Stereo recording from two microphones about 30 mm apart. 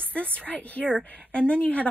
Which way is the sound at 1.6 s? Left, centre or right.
Left.